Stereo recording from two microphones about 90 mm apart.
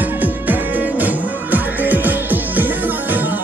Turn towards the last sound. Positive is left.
turn(degrees=-20)  # may be behind; listen again after turning